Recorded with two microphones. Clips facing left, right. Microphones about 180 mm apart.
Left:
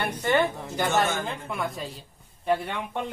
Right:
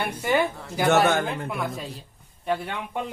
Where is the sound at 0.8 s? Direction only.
65° right (ahead or behind).